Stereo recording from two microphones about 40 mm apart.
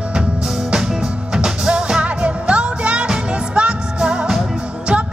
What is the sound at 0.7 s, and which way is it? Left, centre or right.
Music, centre.